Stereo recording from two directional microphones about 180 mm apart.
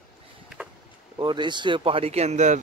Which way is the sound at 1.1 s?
25° right (ahead or behind).